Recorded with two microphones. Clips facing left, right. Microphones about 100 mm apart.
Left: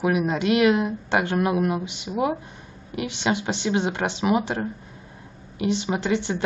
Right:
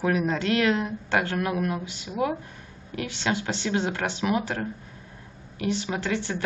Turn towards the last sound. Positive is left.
turn(degrees=20)  # may be behind; listen again after turning